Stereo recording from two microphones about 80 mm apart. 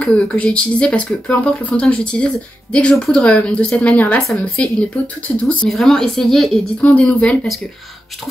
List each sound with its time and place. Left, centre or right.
0.0 s speech: centre
5.7 s speech: centre
6.8 s speech: centre